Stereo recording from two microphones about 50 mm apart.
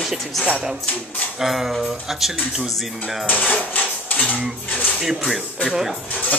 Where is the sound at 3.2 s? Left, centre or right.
Left.